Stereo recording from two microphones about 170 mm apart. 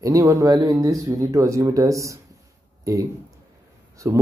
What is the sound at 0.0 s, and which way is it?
Speech, 20° right (ahead or behind).